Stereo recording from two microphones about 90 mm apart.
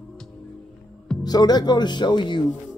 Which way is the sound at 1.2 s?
50° left (ahead or behind).